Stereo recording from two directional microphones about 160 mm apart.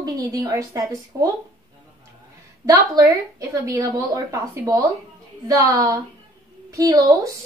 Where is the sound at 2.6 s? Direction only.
20° right (ahead or behind).